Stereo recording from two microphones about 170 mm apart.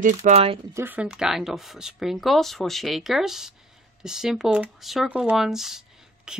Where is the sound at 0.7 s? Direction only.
10° right (ahead or behind).